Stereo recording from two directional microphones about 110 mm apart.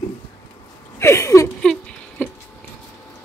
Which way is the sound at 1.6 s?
5° left (ahead or behind).